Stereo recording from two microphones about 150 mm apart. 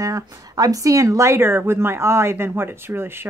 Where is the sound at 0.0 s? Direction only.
25° right (ahead or behind).